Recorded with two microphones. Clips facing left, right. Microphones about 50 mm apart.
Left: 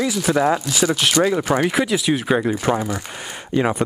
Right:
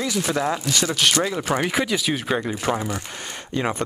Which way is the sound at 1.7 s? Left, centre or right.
Centre.